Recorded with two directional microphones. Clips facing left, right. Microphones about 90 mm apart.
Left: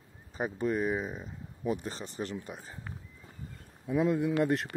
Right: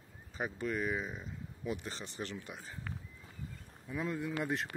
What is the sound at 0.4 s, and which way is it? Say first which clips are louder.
Speech: left 6 dB; 30° left (ahead or behind).